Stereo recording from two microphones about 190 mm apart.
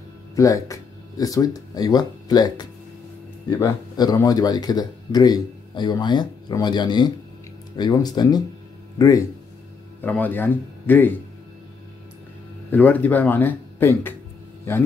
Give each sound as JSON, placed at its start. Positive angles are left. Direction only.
{"t": 0.4, "sound": "speech", "side_deg": 15}
{"t": 12.7, "sound": "speech", "side_deg": 10}